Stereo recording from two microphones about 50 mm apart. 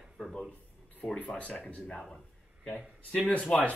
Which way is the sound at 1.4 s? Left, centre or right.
Left.